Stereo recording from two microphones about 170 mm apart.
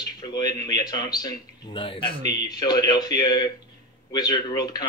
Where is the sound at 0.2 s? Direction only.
25° left (ahead or behind).